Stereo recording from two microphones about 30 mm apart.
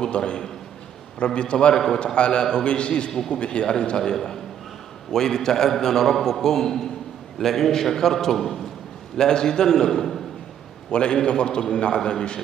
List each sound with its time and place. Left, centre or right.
0.0 s a man's voice: left
3.1 s a man's voice: centre
3.3 s a man's voice: left
3.8 s a man's voice: left
10.9 s a man's voice: left